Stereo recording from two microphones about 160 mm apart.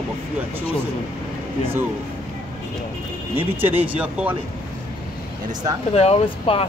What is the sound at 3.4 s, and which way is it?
Speech, 10° right (ahead or behind).